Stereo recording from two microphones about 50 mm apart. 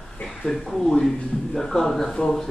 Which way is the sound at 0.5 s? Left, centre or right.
Centre.